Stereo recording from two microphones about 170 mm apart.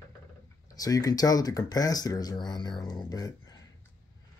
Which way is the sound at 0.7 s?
20° left (ahead or behind).